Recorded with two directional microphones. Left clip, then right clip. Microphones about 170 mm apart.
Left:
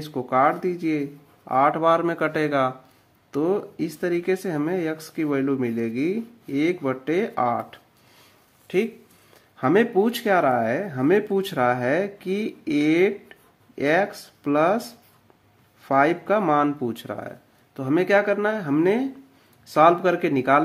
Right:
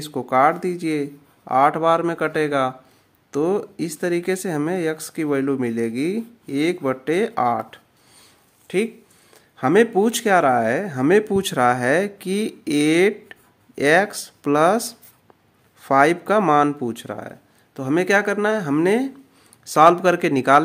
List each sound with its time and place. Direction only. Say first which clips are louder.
0.0 s speech: right 3 dB; 25° right (ahead or behind)